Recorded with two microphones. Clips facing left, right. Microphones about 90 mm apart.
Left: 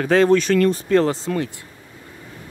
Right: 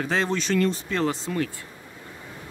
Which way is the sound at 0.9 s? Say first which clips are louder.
Left 8 dB; 40° left (ahead or behind).